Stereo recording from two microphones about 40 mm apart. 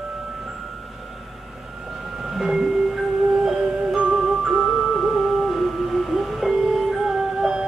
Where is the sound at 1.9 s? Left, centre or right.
Centre.